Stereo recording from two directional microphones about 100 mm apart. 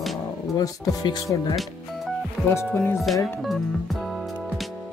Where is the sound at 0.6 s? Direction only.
40° left (ahead or behind).